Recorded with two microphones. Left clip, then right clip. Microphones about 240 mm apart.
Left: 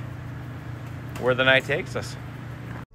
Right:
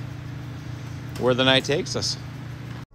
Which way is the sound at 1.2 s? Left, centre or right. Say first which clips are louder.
Even; centre.